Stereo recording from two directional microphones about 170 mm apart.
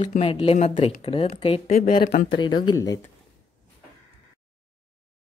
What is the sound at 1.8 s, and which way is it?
Speech, 55° left (ahead or behind).